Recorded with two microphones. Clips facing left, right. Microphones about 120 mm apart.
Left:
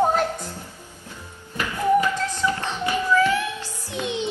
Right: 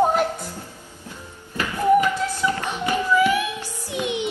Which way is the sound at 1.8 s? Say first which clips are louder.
Right 2 dB; 15° right (ahead or behind).